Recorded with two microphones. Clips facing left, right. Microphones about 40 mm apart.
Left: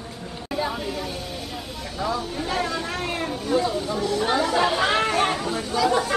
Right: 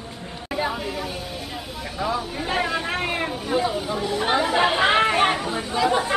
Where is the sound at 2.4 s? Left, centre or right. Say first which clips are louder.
Right 3 dB; right.